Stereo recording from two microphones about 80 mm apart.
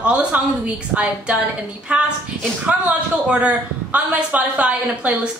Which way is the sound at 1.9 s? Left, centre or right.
Centre.